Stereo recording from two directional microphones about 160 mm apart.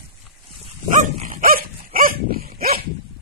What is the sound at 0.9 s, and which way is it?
Dog, 50° right (ahead or behind).